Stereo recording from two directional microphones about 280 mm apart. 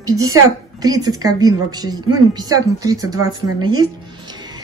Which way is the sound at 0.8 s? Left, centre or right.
Centre.